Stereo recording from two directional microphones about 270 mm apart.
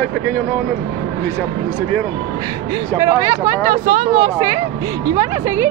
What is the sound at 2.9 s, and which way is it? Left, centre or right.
Speech, centre.